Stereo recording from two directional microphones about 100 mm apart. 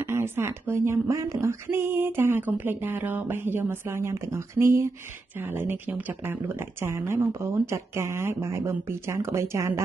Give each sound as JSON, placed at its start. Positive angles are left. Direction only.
{"t": 0.0, "sound": "speech", "side_deg": -25}